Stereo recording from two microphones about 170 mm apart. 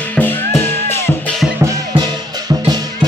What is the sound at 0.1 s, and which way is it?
Music, 10° left (ahead or behind).